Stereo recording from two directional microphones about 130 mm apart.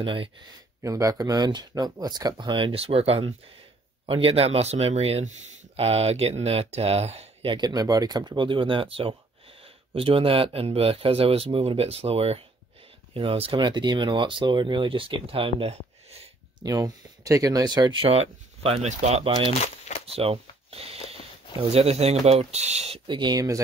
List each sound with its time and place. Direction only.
0.0 s speech: 40° right (ahead or behind)
0.8 s speech: 25° right (ahead or behind); by 7.2 s 55° right (ahead or behind)
7.4 s speech: 35° right (ahead or behind)
13.6 s speech: 35° right (ahead or behind)
15.6 s a sound: 50° right (ahead or behind)
16.5 s speech: 30° right (ahead or behind)
18.0 s speech: 50° right (ahead or behind)
20.2 s a sound: 50° right (ahead or behind)
21.7 s speech: 55° right (ahead or behind); by 23.6 s 30° right (ahead or behind)